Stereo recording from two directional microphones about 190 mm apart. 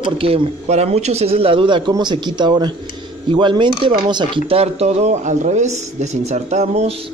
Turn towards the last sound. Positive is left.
turn(degrees=-35)  # may be behind; listen again after turning